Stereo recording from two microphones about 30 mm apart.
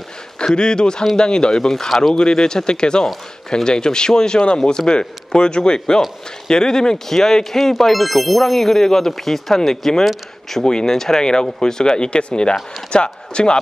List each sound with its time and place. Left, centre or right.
0.6 s speech: left